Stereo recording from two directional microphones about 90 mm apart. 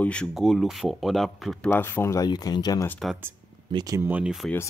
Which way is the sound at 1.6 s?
20° left (ahead or behind).